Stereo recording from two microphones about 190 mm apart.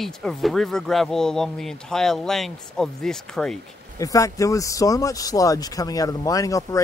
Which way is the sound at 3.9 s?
15° left (ahead or behind).